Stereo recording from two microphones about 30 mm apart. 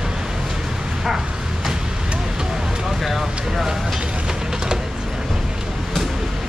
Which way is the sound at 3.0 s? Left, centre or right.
Centre.